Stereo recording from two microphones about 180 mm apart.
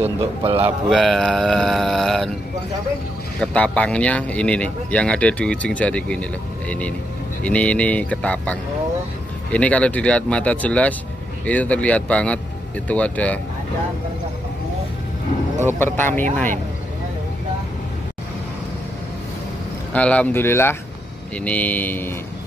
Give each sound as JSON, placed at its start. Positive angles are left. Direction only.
{"t": 0.0, "sound": "speech", "side_deg": -30}
{"t": 0.6, "sound": "speech", "side_deg": -10}
{"t": 0.9, "sound": "speech", "side_deg": 0}
{"t": 3.3, "sound": "speech", "side_deg": 5}
{"t": 15.6, "sound": "speech", "side_deg": 10}
{"t": 19.9, "sound": "speech", "side_deg": 5}